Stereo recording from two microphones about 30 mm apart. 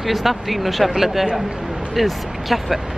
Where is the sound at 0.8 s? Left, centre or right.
Centre.